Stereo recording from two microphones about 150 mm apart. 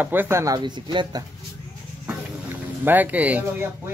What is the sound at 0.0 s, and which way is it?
Speech, 15° right (ahead or behind).